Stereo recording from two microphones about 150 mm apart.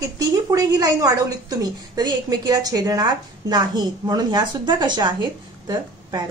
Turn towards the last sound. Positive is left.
turn(degrees=-30)  # may be behind; listen again after turning